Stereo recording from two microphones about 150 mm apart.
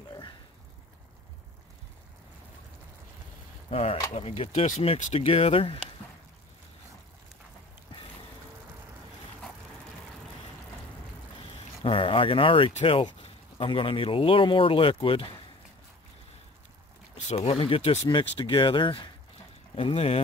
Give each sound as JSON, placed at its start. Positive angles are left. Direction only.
{"t": 3.7, "sound": "speech", "side_deg": 40}
{"t": 11.8, "sound": "speech", "side_deg": 35}
{"t": 17.1, "sound": "speech", "side_deg": 40}